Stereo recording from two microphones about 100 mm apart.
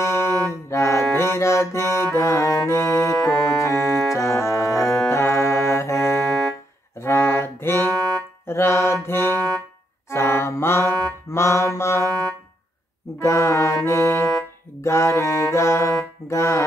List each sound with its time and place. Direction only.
0.0 s music: 25° left (ahead or behind)
3.7 s organ: centre (ahead or behind)
4.1 s music: 30° left (ahead or behind)
4.8 s music: 5° left (ahead or behind)
5.1 s music: 30° left (ahead or behind)
6.2 s music: 5° left (ahead or behind)
7.0 s music: 25° left (ahead or behind)
7.9 s music: 5° left (ahead or behind)
8.5 s mantra: 25° left (ahead or behind)
11.3 s music: 30° left (ahead or behind)
12.1 s a sound: 10° left (ahead or behind)
13.2 s music: 30° left (ahead or behind)